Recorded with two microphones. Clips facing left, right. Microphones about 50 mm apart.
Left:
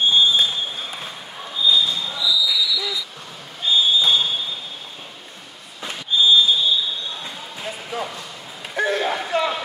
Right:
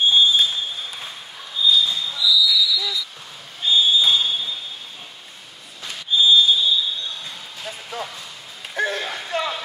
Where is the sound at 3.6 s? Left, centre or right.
Centre.